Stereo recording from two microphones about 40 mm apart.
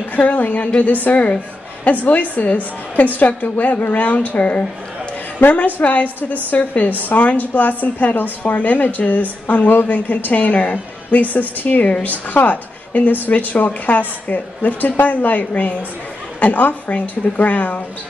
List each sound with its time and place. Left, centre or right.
0.1 s a woman's voice: left
5.8 s a woman's voice: left